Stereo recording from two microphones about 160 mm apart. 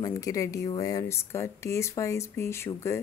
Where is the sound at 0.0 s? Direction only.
20° left (ahead or behind).